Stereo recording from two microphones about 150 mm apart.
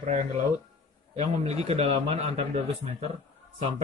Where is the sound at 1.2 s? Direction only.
45° right (ahead or behind).